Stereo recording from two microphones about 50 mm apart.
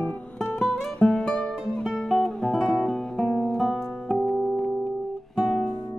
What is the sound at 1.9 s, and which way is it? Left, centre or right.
Music, centre.